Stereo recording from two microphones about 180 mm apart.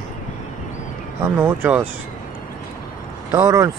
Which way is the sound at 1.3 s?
10° right (ahead or behind).